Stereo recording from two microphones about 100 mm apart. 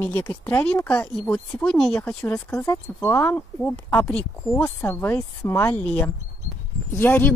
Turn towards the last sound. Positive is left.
turn(degrees=20)  # may be behind; listen again after turning